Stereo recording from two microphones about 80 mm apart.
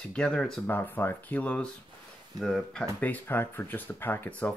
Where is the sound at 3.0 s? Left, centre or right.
Left.